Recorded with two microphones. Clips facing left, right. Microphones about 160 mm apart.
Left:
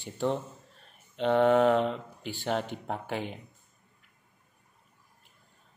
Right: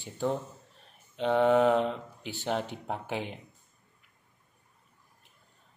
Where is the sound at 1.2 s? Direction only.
10° right (ahead or behind).